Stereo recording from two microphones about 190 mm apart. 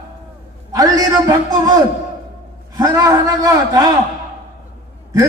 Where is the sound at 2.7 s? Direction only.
20° right (ahead or behind).